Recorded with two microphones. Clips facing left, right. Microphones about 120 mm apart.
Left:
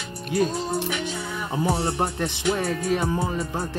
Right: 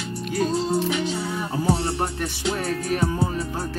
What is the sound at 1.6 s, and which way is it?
Music, 20° left (ahead or behind).